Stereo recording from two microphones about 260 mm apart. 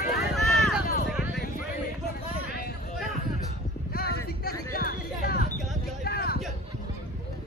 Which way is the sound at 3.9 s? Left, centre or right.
Left.